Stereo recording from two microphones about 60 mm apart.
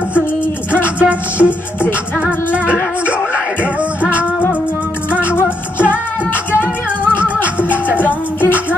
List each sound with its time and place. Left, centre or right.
0.9 s music: centre
4.1 s music: left
8.0 s music: left